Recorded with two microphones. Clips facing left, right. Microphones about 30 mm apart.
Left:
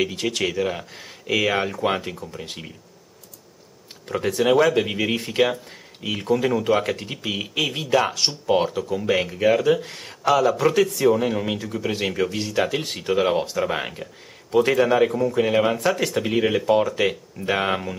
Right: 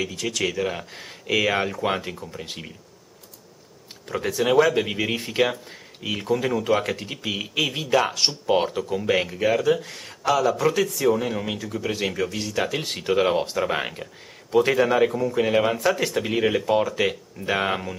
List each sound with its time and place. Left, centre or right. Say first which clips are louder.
0.0 s speech: left 4 dB; left
0.4 s speech: even; centre
4.1 s speech: left 2 dB; centre
12.8 s speech: even; centre